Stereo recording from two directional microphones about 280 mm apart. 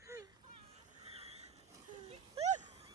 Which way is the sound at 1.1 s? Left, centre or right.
Right.